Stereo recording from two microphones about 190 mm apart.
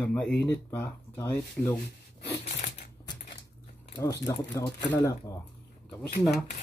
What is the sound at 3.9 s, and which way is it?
Speech, 20° left (ahead or behind).